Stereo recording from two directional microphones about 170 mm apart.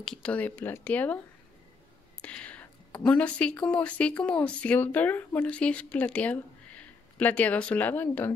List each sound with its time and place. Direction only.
0.0 s speech: 5° left (ahead or behind)
2.2 s speech: 10° left (ahead or behind)